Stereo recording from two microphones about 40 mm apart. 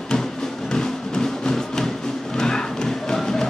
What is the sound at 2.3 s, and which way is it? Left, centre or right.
Clip-clop, centre.